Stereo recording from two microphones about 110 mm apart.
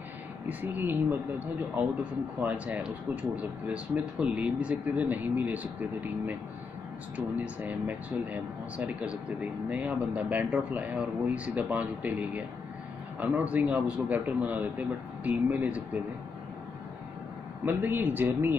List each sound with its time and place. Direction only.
0.5 s speech: 15° right (ahead or behind)
17.6 s speech: 20° right (ahead or behind)